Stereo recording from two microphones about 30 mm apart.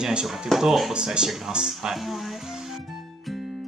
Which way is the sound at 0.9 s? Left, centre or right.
Right.